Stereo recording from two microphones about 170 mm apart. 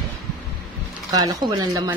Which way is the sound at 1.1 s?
20° right (ahead or behind).